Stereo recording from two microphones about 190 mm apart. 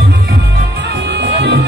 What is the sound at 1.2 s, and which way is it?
Music, 65° right (ahead or behind).